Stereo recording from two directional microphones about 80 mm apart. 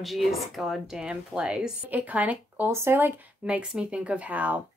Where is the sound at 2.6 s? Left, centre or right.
Right.